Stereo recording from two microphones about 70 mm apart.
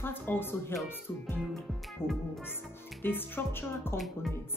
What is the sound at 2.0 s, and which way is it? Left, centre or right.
Speech, left.